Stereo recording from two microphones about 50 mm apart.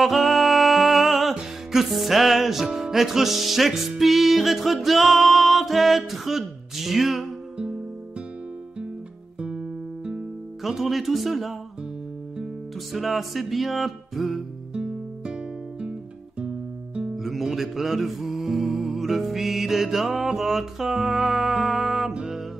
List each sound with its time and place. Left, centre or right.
0.0 s music: centre
9.4 s guitar: centre
10.6 s music: centre
12.9 s music: centre
14.7 s music: centre
17.1 s music: centre